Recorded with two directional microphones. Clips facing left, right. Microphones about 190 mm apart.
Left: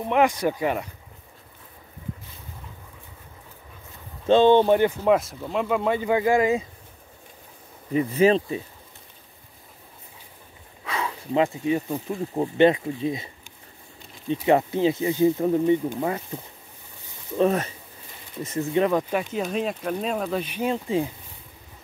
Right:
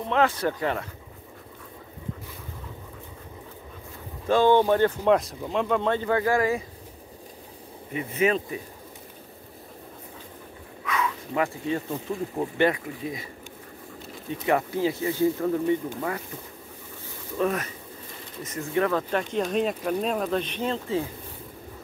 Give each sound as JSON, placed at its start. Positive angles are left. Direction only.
{"t": 0.0, "sound": "speech", "side_deg": 15}
{"t": 4.3, "sound": "speech", "side_deg": 20}
{"t": 7.9, "sound": "speech", "side_deg": 35}
{"t": 10.9, "sound": "a sound", "side_deg": 30}
{"t": 11.4, "sound": "speech", "side_deg": 15}
{"t": 14.3, "sound": "speech", "side_deg": 25}
{"t": 17.4, "sound": "speech", "side_deg": 25}